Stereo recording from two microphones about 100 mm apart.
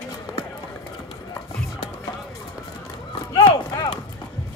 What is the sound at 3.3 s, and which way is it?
Clip-clop, 45° left (ahead or behind).